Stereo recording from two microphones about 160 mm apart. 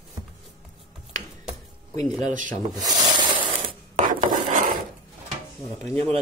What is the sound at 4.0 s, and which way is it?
Filing, 55° right (ahead or behind).